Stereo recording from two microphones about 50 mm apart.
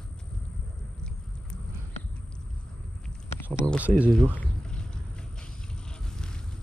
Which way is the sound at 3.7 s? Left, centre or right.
Right.